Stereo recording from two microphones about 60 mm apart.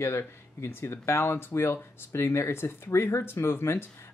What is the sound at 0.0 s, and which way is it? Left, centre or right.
Speech, left.